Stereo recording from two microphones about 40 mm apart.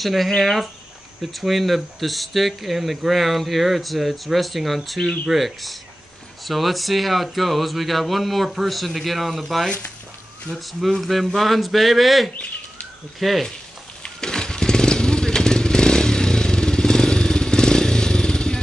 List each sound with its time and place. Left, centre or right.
0.0 s speech: centre
14.0 s motorcycle: centre